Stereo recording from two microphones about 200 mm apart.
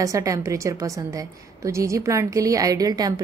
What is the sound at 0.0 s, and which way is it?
A woman's voice, 15° right (ahead or behind).